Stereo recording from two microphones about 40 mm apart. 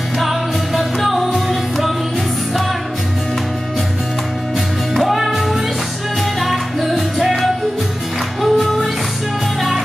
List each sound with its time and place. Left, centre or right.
0.2 s music: centre
4.9 s music: centre